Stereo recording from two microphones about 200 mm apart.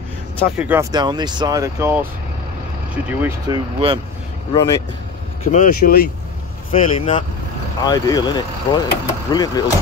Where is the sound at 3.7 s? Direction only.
25° right (ahead or behind).